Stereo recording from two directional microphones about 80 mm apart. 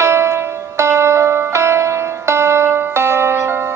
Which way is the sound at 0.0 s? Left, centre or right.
Right.